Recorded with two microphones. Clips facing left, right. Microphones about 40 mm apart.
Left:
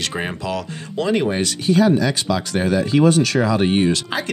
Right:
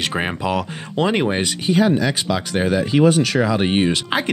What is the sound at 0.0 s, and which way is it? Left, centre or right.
Speech, centre.